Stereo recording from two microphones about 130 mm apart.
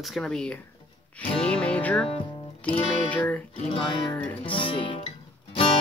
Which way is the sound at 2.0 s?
45° left (ahead or behind).